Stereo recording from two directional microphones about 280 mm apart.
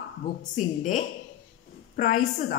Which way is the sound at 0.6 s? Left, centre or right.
Left.